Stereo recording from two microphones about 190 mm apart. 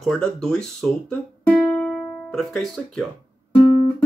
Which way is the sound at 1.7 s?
5° left (ahead or behind).